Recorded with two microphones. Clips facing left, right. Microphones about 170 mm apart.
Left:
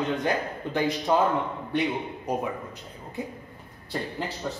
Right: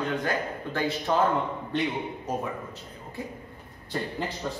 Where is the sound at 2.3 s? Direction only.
15° left (ahead or behind).